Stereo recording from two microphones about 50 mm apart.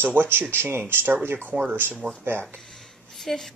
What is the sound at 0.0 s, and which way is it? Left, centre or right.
Speech, right.